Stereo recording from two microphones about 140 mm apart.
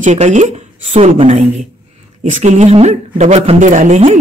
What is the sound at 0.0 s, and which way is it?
Speech, 60° right (ahead or behind).